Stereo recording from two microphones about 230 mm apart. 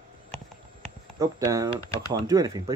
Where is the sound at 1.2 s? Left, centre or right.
Centre.